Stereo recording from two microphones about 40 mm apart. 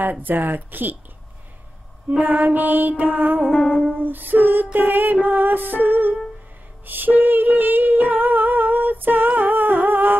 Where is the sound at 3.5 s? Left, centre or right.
Left.